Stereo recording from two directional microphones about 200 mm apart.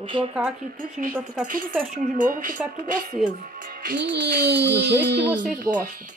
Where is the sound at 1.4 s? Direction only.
45° right (ahead or behind).